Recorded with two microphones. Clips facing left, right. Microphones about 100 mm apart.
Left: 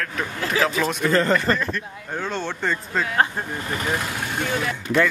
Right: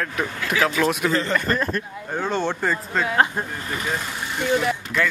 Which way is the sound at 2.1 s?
15° right (ahead or behind).